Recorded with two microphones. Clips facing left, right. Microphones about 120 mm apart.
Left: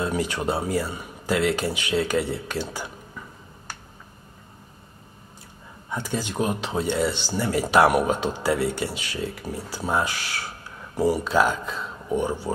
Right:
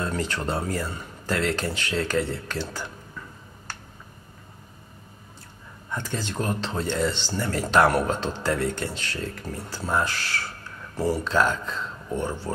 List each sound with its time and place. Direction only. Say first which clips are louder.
0.0 s speech: left 3 dB; 10° left (ahead or behind)
5.9 s speech: left 2 dB; 10° left (ahead or behind)